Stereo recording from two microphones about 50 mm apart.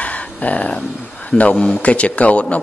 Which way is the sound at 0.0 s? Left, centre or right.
Left.